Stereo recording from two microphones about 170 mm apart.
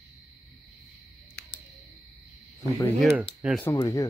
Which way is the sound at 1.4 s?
85° left.